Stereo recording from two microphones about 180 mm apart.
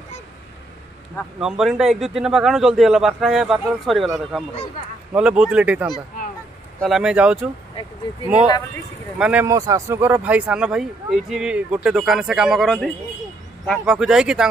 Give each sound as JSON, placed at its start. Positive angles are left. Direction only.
{"t": 1.1, "sound": "speech", "side_deg": 0}
{"t": 7.8, "sound": "speech", "side_deg": 30}
{"t": 9.2, "sound": "speech", "side_deg": -10}